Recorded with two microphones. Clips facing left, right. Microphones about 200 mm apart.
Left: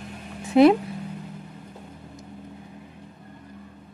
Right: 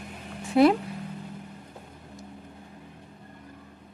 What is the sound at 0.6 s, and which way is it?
Speech, 20° left (ahead or behind).